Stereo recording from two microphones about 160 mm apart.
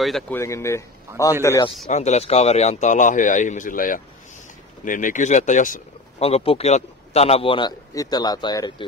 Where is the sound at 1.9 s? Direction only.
45° left (ahead or behind).